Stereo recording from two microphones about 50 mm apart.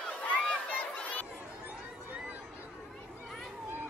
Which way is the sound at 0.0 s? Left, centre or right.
Left.